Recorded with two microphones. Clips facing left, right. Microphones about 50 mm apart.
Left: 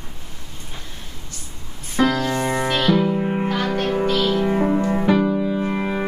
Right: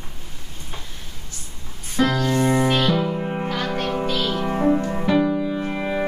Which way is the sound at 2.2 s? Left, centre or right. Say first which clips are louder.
Right 2 dB; centre.